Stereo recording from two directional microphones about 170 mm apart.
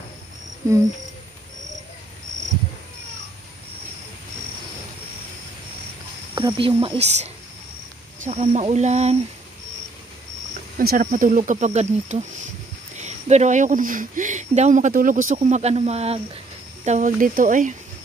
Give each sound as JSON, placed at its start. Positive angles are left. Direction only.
{"t": 6.3, "sound": "snake", "side_deg": -30}
{"t": 6.8, "sound": "speech", "side_deg": -35}
{"t": 10.8, "sound": "speech", "side_deg": -60}